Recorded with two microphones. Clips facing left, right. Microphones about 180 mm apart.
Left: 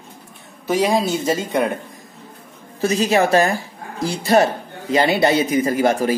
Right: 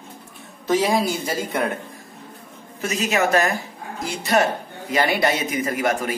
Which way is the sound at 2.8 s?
30° left (ahead or behind).